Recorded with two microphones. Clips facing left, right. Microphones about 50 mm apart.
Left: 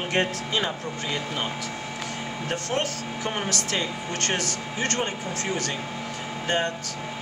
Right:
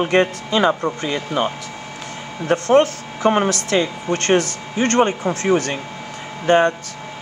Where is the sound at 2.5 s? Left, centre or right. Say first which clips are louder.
Right 14 dB; right.